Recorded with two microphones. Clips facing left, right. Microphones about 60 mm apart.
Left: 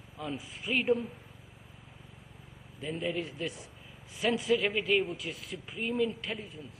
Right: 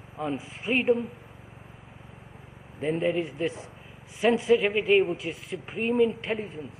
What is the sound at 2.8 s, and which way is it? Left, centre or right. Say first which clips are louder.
A woman's voice: right 8 dB; right.